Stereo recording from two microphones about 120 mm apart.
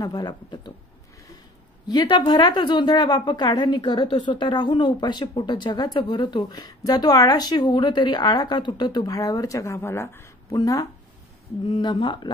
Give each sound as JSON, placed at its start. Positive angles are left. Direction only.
{"t": 0.0, "sound": "a woman's voice", "side_deg": 35}
{"t": 1.9, "sound": "a woman's voice", "side_deg": 35}
{"t": 11.6, "sound": "a woman's voice", "side_deg": 40}